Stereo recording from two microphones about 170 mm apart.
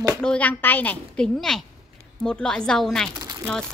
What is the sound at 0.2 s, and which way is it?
A child's voice, 5° left (ahead or behind).